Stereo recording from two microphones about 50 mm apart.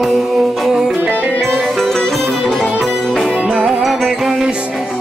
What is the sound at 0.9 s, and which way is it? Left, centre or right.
Music, right.